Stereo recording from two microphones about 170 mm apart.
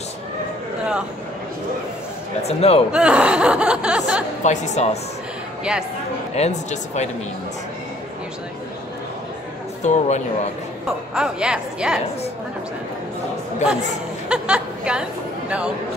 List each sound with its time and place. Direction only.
2.4 s speech: 35° left (ahead or behind)
2.9 s speech: 5° right (ahead or behind)
4.4 s speech: 45° left (ahead or behind)
5.6 s speech: 5° right (ahead or behind)
6.3 s speech: 40° left (ahead or behind)
9.8 s speech: 45° left (ahead or behind)
11.1 s a woman's voice: 5° right (ahead or behind)
14.3 s a sound: 5° right (ahead or behind)